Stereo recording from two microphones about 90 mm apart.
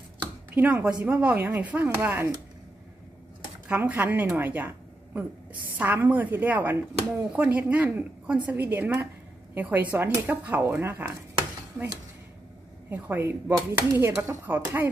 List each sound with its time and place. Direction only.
0.5 s speech: 20° right (ahead or behind)
3.6 s a woman's voice: 15° right (ahead or behind)
12.9 s speech: 20° right (ahead or behind)